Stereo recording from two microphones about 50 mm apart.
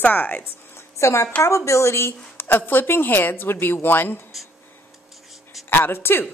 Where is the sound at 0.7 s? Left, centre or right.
Left.